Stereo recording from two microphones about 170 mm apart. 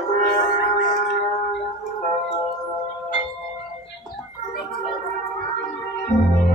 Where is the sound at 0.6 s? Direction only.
50° left (ahead or behind).